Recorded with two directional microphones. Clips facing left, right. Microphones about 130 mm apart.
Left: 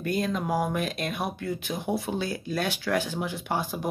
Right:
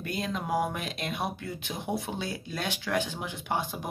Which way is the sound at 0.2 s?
20° right (ahead or behind).